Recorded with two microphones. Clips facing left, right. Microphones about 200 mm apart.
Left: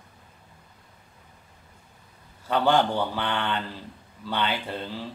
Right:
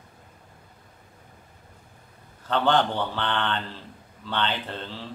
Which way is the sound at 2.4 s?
10° left (ahead or behind).